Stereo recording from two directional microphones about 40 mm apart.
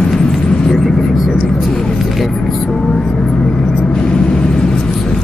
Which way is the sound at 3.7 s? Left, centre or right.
Left.